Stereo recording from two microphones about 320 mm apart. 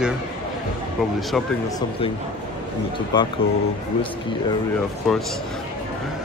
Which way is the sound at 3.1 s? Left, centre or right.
Centre.